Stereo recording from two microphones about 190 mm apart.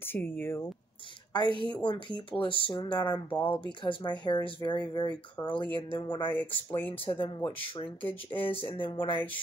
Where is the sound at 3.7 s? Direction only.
25° left (ahead or behind).